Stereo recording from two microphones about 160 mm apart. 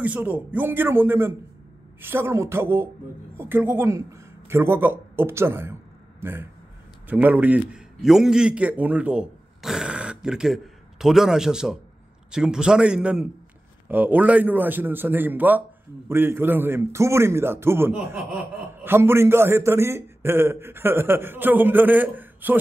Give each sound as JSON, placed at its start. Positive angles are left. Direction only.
{"t": 0.0, "sound": "a man's voice", "side_deg": -10}